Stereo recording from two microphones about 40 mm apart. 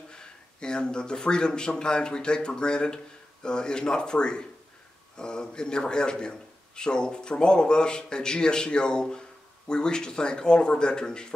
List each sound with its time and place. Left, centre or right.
0.1 s a man's voice: left